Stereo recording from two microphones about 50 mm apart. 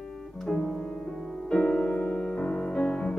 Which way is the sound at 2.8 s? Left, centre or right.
Left.